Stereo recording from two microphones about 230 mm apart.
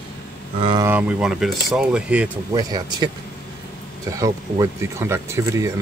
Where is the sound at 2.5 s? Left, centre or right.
Centre.